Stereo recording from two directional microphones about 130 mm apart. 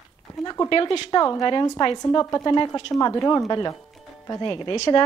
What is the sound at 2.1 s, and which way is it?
A woman's voice, 25° left (ahead or behind).